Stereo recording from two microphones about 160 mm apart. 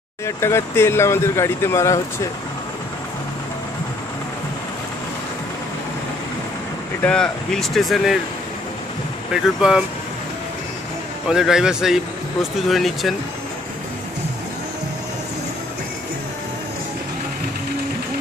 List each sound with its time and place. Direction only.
0.4 s speech: 15° left (ahead or behind)
7.0 s speech: 5° left (ahead or behind)
9.3 s speech: 5° right (ahead or behind)
11.2 s speech: 5° right (ahead or behind)